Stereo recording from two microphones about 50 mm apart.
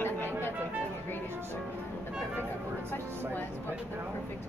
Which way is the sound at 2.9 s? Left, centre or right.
Left.